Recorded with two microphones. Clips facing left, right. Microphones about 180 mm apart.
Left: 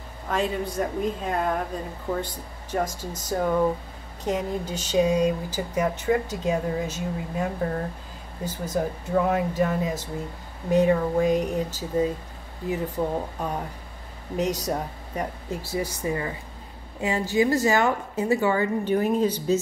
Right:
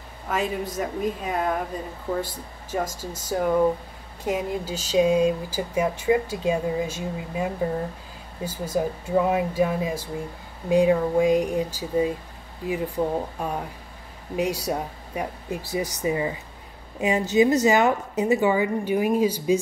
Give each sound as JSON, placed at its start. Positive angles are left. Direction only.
{"t": 0.3, "sound": "a woman's voice", "side_deg": -5}